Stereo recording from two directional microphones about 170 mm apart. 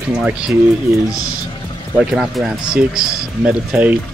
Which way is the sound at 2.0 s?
5° right (ahead or behind).